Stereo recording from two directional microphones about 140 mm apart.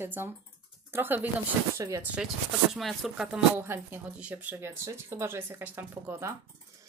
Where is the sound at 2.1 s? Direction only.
5° right (ahead or behind).